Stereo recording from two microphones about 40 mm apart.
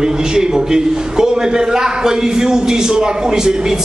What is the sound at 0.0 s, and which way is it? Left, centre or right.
A man's voice, centre.